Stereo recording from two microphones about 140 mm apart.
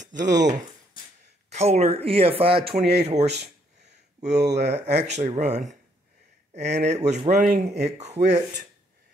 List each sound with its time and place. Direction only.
0.0 s speech: 60° right (ahead or behind)
1.5 s speech: 50° right (ahead or behind)